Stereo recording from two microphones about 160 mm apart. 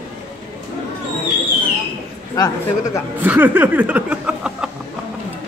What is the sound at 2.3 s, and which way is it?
Speech, 25° left (ahead or behind).